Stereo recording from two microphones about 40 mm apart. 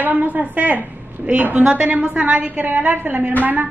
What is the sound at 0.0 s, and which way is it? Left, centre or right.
A woman's voice, right.